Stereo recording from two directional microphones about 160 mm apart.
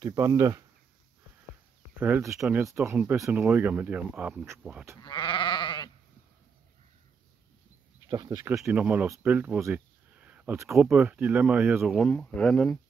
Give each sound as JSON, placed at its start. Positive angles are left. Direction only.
{"t": 0.0, "sound": "speech", "side_deg": -20}
{"t": 2.0, "sound": "speech", "side_deg": -15}
{"t": 5.0, "sound": "sheep", "side_deg": 30}
{"t": 8.1, "sound": "speech", "side_deg": -20}
{"t": 8.5, "sound": "speech", "side_deg": -5}